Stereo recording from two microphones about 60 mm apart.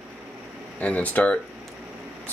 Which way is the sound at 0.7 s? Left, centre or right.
Left.